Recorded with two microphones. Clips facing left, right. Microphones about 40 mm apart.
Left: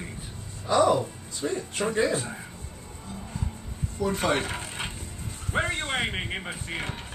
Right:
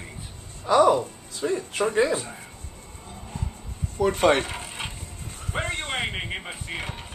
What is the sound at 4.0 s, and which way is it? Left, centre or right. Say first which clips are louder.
Speech: right 5 dB; right.